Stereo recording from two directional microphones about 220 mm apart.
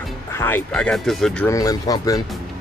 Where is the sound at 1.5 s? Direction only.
15° left (ahead or behind).